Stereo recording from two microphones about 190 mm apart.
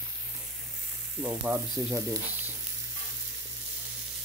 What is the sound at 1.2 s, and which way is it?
Frying, 10° right (ahead or behind).